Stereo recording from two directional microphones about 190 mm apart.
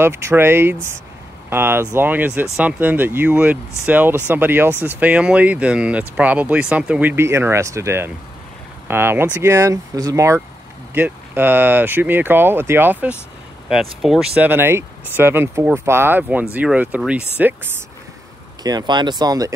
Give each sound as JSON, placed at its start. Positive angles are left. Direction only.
{"t": 0.0, "sound": "speech", "side_deg": -10}
{"t": 18.6, "sound": "speech", "side_deg": -20}